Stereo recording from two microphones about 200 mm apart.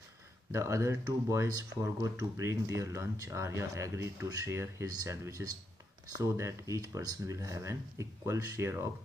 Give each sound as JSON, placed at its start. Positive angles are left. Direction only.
{"t": 0.5, "sound": "speech", "side_deg": -15}